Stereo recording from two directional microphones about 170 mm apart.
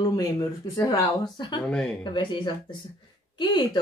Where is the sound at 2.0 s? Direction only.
30° left (ahead or behind).